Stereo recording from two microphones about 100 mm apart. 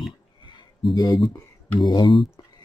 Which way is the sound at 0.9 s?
35° left (ahead or behind).